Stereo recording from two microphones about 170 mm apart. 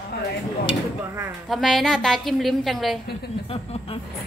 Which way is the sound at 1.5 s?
Centre (ahead or behind).